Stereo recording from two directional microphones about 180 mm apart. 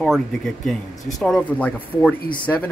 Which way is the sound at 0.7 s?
Centre (ahead or behind).